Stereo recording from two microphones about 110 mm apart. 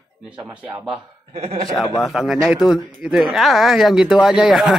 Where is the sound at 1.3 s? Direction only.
75° right (ahead or behind).